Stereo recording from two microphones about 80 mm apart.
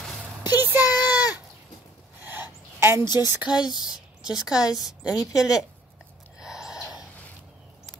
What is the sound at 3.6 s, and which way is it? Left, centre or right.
Speech, left.